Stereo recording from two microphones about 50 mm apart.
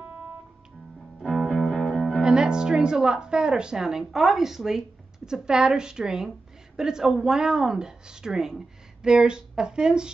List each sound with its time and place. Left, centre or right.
1.3 s music: centre
2.2 s a woman's voice: centre